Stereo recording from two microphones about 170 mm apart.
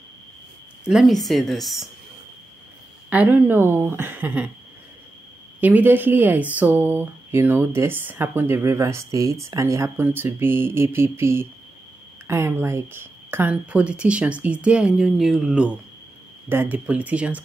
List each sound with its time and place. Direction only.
0.8 s speech: centre (ahead or behind)
3.1 s speech: 10° right (ahead or behind)
5.6 s speech: 10° right (ahead or behind)